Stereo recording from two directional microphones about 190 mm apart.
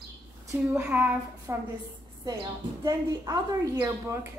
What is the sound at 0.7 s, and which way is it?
Speech, 5° right (ahead or behind).